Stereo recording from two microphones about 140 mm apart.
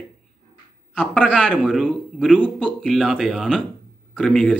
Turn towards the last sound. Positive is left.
turn(degrees=5)  # may be behind; listen again after turning